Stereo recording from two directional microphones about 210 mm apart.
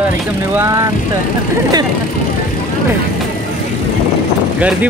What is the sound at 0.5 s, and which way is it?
Speech, 10° right (ahead or behind).